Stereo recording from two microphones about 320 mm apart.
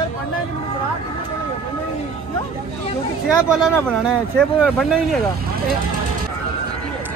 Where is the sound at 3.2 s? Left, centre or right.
Centre.